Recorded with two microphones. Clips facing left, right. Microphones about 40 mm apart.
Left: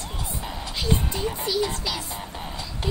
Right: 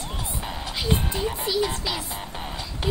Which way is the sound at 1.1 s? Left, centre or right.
Centre.